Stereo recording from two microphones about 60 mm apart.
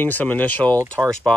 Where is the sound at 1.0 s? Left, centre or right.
Right.